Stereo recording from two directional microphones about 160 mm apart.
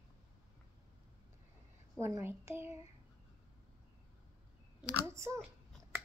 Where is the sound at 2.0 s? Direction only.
15° right (ahead or behind).